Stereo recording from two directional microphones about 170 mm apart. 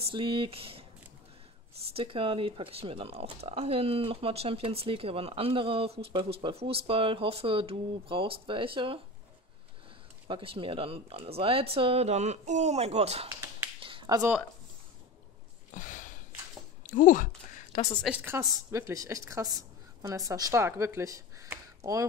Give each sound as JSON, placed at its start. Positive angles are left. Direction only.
{"t": 0.0, "sound": "speech", "side_deg": -30}
{"t": 10.2, "sound": "speech", "side_deg": -30}
{"t": 13.3, "sound": "finger snapping", "side_deg": -15}
{"t": 13.7, "sound": "finger snapping", "side_deg": -30}
{"t": 15.7, "sound": "sniff", "side_deg": 50}
{"t": 16.8, "sound": "a sound", "side_deg": 50}
{"t": 18.0, "sound": "a woman's voice", "side_deg": -10}